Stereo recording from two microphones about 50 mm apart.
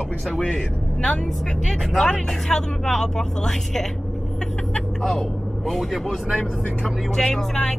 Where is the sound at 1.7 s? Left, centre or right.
Centre.